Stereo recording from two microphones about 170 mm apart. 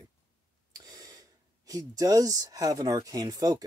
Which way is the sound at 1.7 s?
20° right (ahead or behind).